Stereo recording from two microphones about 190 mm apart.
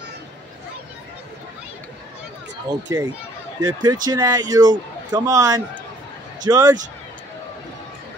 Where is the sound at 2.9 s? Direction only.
15° right (ahead or behind).